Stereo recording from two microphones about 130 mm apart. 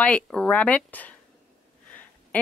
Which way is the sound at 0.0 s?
5° left (ahead or behind).